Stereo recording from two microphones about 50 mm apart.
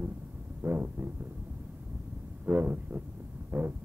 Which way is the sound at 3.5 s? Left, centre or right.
Right.